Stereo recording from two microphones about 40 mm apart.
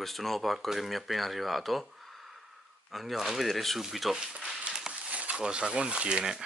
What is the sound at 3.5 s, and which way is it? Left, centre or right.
Speech, centre.